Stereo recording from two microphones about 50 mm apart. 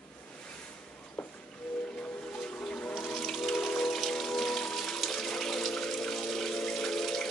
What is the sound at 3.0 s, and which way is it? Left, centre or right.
Raindrop, centre.